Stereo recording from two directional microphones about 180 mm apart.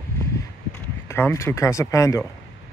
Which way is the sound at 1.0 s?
15° left (ahead or behind).